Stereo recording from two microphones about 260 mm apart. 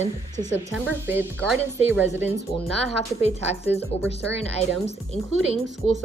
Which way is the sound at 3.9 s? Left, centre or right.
Left.